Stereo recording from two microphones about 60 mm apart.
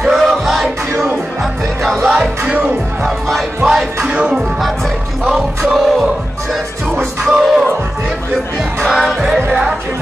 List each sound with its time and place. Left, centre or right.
0.0 s music: centre
2.0 s music: centre
4.1 s speech: centre
5.6 s music: centre
7.2 s music: centre
8.8 s music: centre